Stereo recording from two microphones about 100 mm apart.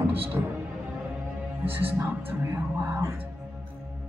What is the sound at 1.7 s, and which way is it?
Speech, 20° right (ahead or behind).